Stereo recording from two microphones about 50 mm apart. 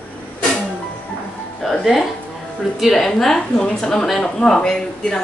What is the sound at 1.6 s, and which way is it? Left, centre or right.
A woman's voice, centre.